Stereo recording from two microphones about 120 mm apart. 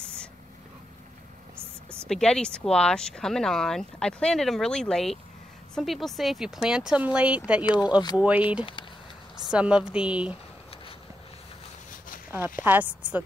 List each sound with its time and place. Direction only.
2.0 s speech: 5° left (ahead or behind)
7.6 s speech: 35° left (ahead or behind)
8.2 s speech: 10° right (ahead or behind)
12.3 s speech: 15° right (ahead or behind)